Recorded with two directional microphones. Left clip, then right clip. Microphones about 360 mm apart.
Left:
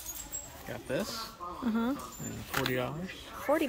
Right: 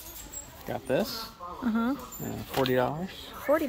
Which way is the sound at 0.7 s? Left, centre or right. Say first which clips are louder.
Right 7 dB; centre.